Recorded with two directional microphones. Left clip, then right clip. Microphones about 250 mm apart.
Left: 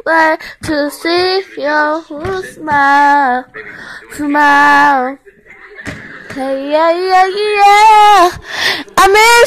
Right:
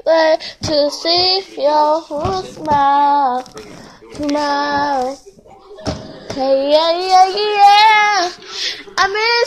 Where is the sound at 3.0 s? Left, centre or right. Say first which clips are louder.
Left 4 dB; left.